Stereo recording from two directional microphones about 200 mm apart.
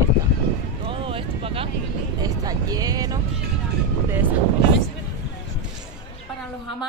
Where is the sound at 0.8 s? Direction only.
25° right (ahead or behind).